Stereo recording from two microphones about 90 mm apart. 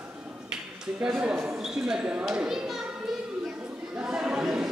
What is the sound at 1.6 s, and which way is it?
A child's voice, 10° right (ahead or behind).